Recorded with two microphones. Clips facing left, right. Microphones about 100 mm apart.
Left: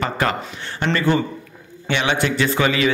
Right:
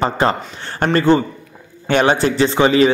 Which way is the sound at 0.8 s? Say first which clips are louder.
Right 5 dB; 45° right (ahead or behind).